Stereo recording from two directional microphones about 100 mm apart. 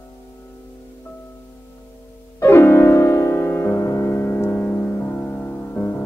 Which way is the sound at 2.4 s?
30° left (ahead or behind).